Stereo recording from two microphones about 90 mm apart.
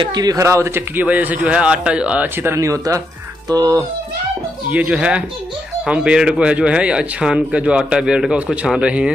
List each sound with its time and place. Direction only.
0.0 s a man's voice: 50° right (ahead or behind)
4.6 s a man's voice: 15° right (ahead or behind)